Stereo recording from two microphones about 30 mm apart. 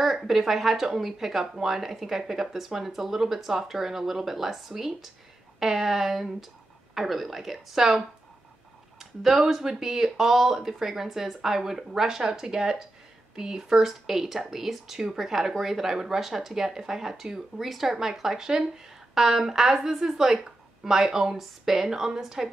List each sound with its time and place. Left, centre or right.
0.0 s speech: centre
9.2 s speech: centre
12.4 s speech: right
13.8 s speech: centre